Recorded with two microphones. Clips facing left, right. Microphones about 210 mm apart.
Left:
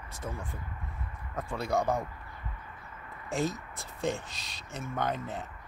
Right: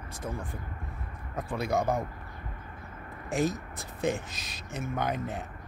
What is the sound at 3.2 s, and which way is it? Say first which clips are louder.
Speech: right 3 dB; 15° right (ahead or behind).